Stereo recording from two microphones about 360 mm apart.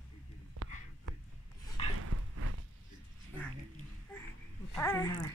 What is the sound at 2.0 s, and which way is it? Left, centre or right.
Dog, right.